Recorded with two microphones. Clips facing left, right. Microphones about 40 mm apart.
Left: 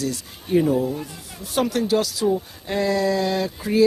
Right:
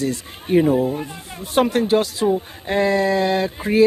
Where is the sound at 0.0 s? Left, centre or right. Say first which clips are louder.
Right 4 dB; right.